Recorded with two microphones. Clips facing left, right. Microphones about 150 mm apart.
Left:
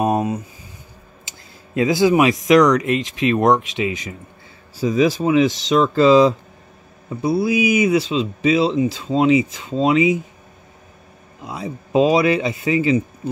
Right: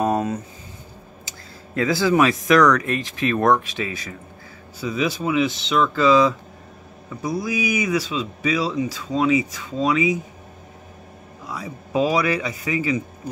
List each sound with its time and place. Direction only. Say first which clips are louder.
0.0 s a sound: left 2 dB; 15° left (ahead or behind)
1.8 s speech: left 3 dB; 20° left (ahead or behind)
4.7 s speech: left 7 dB; 35° left (ahead or behind)
11.4 s speech: left 4 dB; 25° left (ahead or behind)